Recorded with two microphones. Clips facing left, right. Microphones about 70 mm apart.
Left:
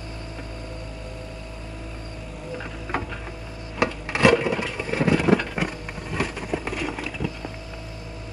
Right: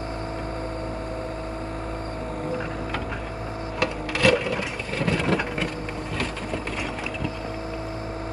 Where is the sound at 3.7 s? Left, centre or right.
Left.